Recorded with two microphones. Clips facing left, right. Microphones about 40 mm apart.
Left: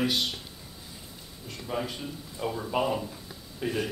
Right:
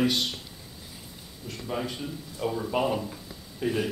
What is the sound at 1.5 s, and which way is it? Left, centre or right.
A man's voice, centre.